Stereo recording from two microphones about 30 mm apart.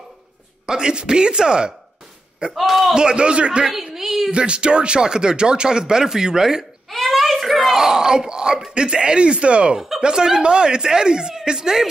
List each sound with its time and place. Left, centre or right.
0.7 s speech: right
2.5 s a man's voice: centre
2.9 s speech: right
3.9 s a sound: centre
4.3 s speech: right
6.9 s a sound: centre
7.7 s yell: centre
8.7 s speech: right
9.8 s speech: centre